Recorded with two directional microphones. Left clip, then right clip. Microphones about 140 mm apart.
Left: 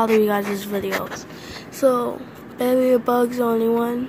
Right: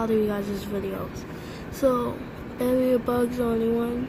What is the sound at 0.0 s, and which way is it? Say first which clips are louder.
Speech: left 7 dB; 10° left (ahead or behind).